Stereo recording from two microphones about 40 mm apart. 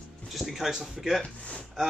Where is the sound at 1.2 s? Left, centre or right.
Left.